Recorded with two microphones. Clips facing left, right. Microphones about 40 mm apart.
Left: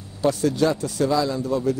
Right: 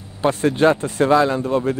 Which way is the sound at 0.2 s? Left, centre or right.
Right.